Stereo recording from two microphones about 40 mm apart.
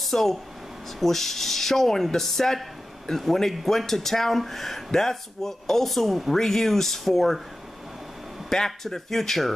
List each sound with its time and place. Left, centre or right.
0.0 s speech: centre
8.5 s speech: centre